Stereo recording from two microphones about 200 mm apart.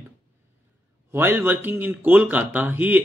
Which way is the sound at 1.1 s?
10° right (ahead or behind).